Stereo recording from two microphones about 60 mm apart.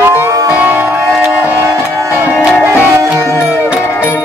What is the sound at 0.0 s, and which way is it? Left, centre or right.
Music, right.